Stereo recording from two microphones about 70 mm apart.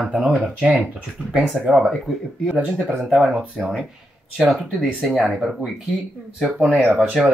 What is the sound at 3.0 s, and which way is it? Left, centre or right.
Speech, centre.